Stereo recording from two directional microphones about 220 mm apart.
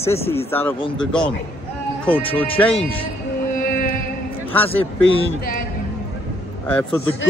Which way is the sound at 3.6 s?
40° left (ahead or behind).